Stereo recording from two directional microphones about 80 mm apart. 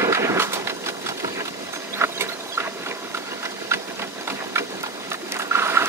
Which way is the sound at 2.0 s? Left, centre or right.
Right.